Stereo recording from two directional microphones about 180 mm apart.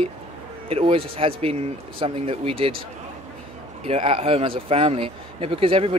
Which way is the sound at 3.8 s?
35° right (ahead or behind).